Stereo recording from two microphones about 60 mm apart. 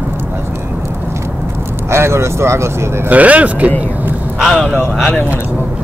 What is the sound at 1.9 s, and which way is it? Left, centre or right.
Speech, right.